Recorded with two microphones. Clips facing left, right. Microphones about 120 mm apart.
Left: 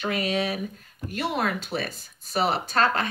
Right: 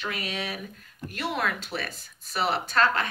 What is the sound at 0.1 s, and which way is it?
Speech, 30° left (ahead or behind).